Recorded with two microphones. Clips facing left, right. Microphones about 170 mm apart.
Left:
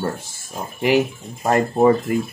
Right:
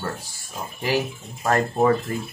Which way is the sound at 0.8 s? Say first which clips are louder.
Left 7 dB; 20° left (ahead or behind).